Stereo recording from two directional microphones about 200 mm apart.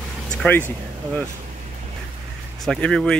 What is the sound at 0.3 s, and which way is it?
Speech, 5° left (ahead or behind).